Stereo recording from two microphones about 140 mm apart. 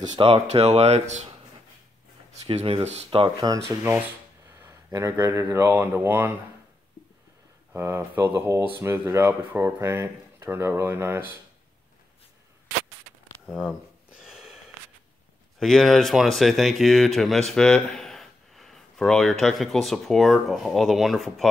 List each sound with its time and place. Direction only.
0.0 s speech: 35° right (ahead or behind); by 1.3 s 55° right (ahead or behind)
2.4 s speech: 45° right (ahead or behind)
4.6 s speech: 20° right (ahead or behind)
7.7 s speech: 15° right (ahead or behind)
13.5 s speech: 5° right (ahead or behind)
14.2 s a sound: 5° right (ahead or behind)
15.6 s speech: centre (ahead or behind)